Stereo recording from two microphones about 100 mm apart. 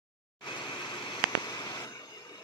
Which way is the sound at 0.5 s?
50° left (ahead or behind).